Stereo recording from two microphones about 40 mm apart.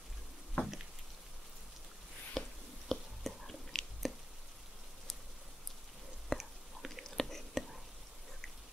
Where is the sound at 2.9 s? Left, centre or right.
Centre.